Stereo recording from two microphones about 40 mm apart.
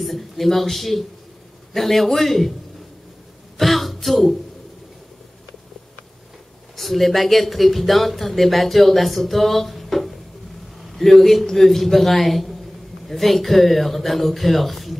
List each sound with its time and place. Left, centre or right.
0.0 s speech: centre
3.5 s a sound: centre
6.8 s speech: centre